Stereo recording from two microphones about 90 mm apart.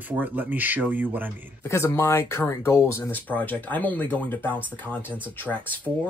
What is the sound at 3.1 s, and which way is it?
Speech, 20° left (ahead or behind).